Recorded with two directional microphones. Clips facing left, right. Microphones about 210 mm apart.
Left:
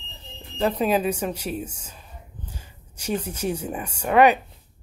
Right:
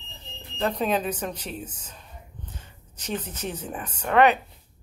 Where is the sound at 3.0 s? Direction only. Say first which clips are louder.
Left 5 dB; 10° left (ahead or behind).